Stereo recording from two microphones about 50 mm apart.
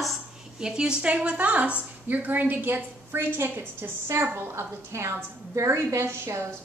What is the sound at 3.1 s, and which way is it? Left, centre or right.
A woman's voice, right.